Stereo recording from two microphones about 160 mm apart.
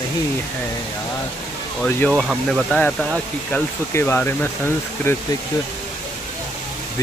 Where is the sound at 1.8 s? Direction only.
10° left (ahead or behind).